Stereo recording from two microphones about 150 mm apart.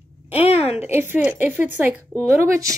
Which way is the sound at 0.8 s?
15° right (ahead or behind).